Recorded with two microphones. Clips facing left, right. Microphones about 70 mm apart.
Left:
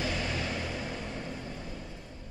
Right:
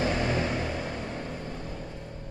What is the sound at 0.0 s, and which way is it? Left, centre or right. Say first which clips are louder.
Vehicle: right 6 dB; right.